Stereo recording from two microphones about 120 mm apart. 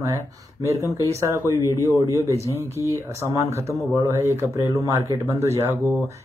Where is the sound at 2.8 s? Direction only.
25° left (ahead or behind).